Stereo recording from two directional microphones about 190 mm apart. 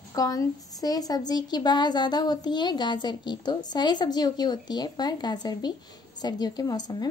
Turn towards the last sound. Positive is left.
turn(degrees=20)  # may be behind; listen again after turning